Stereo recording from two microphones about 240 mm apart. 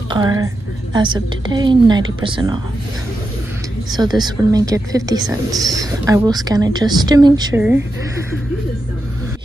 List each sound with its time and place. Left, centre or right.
0.1 s a woman's voice: centre
3.9 s a woman's voice: centre